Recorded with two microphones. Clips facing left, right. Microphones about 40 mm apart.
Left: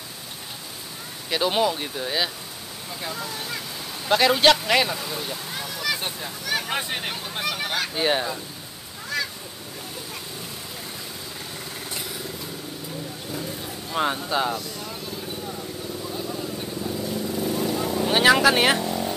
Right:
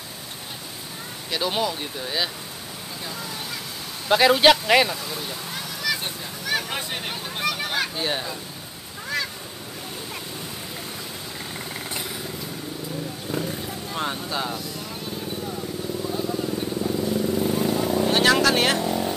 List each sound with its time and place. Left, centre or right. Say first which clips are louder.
1.3 s speech: left 3 dB; centre
3.0 s vehicle: left 2 dB; centre
4.1 s a man's voice: right 2 dB; centre
4.9 s a sound: left 1 dB; centre
6.7 s vehicle: left 2 dB; centre
7.9 s speech: left 4 dB; centre
13.3 s vehicle: right 5 dB; right
13.9 s speech: left 5 dB; centre
16.1 s vehicle: right 4 dB; centre
18.1 s vehicle: left 3 dB; centre
18.8 s vehicle: right 2 dB; centre